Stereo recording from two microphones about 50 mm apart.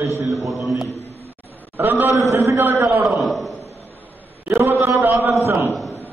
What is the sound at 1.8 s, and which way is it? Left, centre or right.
A man's voice, right.